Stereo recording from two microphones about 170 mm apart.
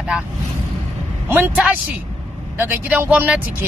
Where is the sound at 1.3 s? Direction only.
10° right (ahead or behind).